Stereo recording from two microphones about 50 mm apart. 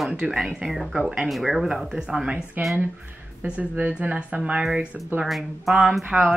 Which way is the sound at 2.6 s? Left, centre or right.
Right.